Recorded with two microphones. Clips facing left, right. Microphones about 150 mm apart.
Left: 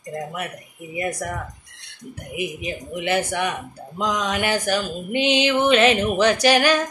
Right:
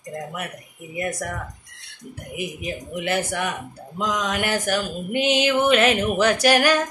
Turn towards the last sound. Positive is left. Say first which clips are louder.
# left 1 dB
turn(degrees=-5)  # may be behind; listen again after turning